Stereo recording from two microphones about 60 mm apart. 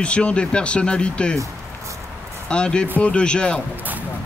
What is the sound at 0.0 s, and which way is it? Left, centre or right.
Speech, centre.